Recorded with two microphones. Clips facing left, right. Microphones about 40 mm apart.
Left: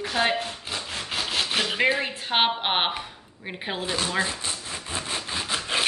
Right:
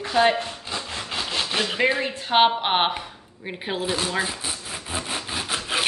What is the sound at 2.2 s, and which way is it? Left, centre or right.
Zipper, centre.